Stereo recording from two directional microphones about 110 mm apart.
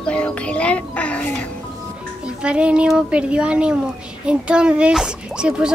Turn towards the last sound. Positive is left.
turn(degrees=-5)  # may be behind; listen again after turning